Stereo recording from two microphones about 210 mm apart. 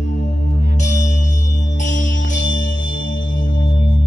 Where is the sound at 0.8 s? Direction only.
35° left (ahead or behind).